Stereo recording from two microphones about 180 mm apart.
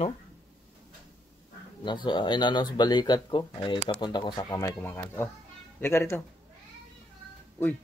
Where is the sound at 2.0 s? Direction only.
25° left (ahead or behind).